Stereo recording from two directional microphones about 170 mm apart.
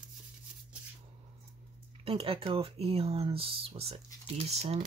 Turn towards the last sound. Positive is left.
turn(degrees=-35)  # may be behind; listen again after turning